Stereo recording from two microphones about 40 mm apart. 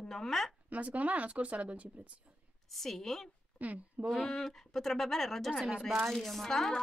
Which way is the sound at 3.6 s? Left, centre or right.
Right.